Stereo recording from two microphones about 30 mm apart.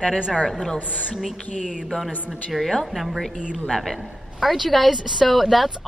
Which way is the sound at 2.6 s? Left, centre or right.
Centre.